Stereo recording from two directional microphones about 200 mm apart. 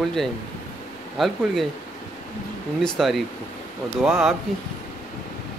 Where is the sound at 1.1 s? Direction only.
Centre (ahead or behind).